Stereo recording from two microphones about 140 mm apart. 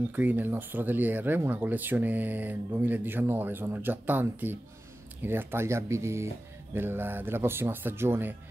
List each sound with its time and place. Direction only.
0.1 s speech: 15° right (ahead or behind)